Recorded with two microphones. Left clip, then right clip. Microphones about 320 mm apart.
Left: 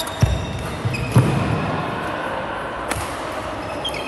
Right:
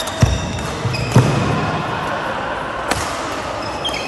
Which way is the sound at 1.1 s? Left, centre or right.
Right.